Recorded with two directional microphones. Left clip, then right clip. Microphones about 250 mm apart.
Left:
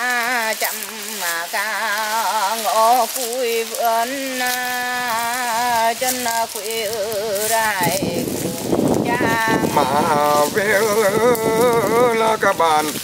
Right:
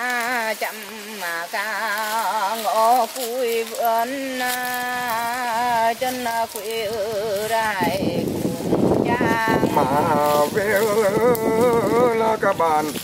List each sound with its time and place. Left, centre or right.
2.1 s frying: centre
2.8 s speech: centre
3.4 s speech: centre
5.6 s a sound: centre
7.5 s speech: centre
9.2 s speech: centre